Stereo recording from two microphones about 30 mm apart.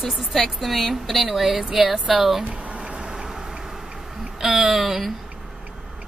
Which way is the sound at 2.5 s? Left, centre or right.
Right.